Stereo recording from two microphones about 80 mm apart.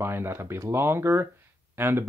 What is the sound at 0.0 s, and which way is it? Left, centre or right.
Speech, right.